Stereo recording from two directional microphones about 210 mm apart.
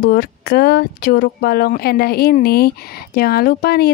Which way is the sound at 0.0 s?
50° left (ahead or behind).